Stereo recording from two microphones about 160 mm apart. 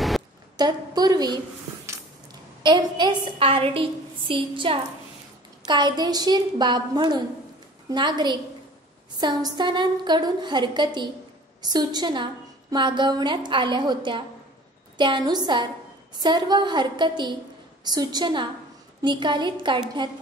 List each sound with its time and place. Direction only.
0.6 s a woman's voice: 25° right (ahead or behind)
2.6 s a woman's voice: 30° right (ahead or behind)